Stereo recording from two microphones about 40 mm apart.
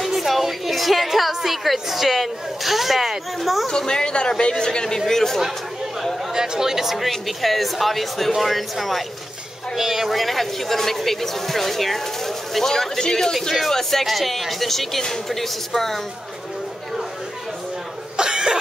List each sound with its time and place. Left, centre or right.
0.0 s a sound: centre
3.6 s speech: centre
6.3 s speech: centre
18.1 s cough: centre